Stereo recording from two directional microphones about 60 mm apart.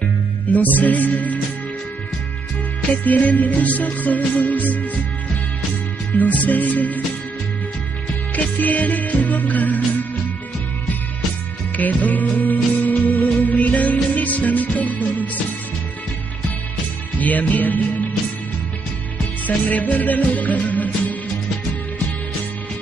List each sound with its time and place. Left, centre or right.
0.5 s music: left
3.0 s music: left
6.1 s music: left
8.5 s music: left
11.7 s music: left
17.2 s music: left
20.0 s music: left